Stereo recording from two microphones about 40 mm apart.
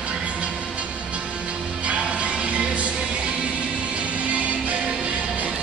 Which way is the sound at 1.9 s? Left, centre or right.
Right.